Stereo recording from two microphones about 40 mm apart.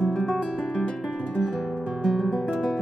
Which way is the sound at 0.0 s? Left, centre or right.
Centre.